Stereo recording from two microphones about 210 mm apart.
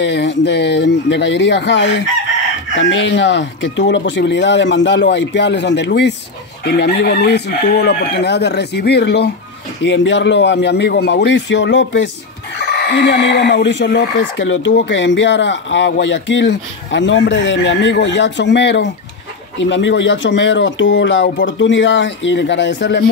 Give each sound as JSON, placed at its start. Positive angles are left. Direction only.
{"t": 0.0, "sound": "speech", "side_deg": 60}